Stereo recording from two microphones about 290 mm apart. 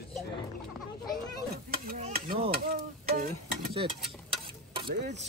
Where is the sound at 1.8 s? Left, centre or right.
Right.